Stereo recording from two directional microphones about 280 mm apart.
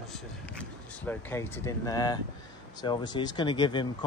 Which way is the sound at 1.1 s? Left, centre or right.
Centre.